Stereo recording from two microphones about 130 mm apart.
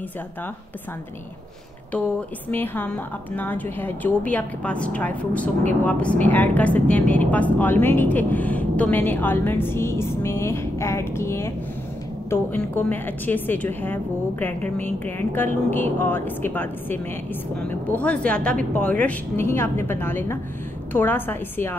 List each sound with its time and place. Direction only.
1.9 s a woman's voice: 10° left (ahead or behind)